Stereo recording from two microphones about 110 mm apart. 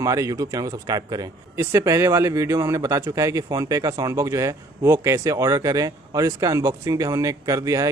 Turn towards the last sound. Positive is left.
turn(degrees=-30)  # may be behind; listen again after turning